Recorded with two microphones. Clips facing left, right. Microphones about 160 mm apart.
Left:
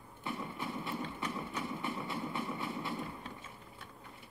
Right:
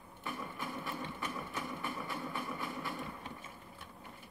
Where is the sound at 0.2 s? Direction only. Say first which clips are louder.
Left 2 dB; 25° left (ahead or behind).